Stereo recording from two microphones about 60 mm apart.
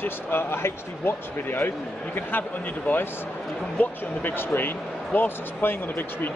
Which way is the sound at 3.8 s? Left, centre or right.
Left.